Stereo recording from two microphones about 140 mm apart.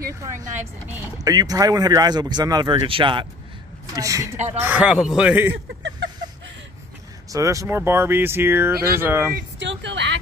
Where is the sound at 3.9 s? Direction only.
25° right (ahead or behind).